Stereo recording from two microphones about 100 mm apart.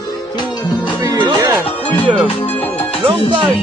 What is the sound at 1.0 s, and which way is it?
Music, 40° right (ahead or behind).